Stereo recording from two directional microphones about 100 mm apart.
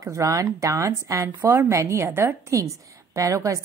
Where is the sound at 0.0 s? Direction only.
30° right (ahead or behind).